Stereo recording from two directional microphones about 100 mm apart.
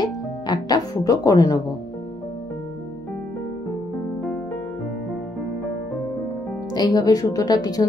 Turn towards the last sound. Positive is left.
turn(degrees=40)  # may be behind; listen again after turning